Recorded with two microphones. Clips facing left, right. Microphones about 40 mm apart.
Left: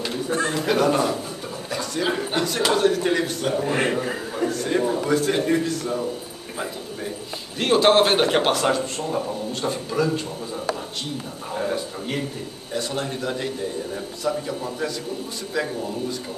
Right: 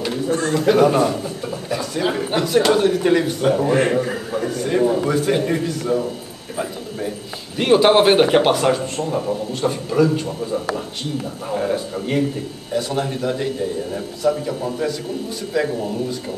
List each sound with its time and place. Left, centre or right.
0.3 s speech: left
0.7 s a man's voice: centre
6.5 s a sound: centre
7.5 s a man's voice: centre